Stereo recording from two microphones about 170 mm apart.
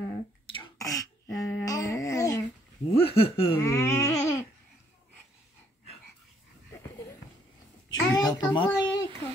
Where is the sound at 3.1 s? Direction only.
35° left (ahead or behind).